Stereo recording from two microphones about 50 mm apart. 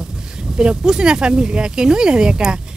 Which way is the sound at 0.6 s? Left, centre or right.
Centre.